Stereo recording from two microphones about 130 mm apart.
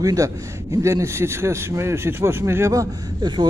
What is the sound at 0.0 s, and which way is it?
Speech, 25° right (ahead or behind).